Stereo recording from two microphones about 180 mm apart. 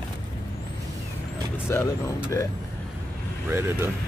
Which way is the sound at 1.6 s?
15° left (ahead or behind).